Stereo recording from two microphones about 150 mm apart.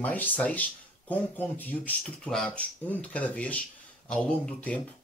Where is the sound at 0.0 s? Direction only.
10° left (ahead or behind).